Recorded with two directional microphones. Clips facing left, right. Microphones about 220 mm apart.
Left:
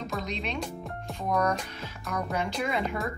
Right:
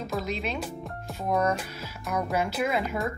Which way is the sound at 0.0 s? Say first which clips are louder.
Right 3 dB; 5° right (ahead or behind).